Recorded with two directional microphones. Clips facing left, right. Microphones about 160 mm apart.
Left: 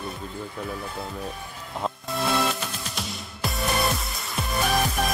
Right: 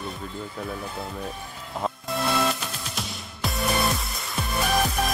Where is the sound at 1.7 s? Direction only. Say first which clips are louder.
Right 1 dB; centre (ahead or behind).